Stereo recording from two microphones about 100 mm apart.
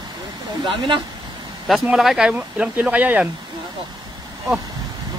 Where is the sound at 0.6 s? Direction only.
55° right (ahead or behind).